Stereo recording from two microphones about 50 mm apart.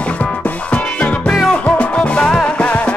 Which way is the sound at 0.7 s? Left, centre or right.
Left.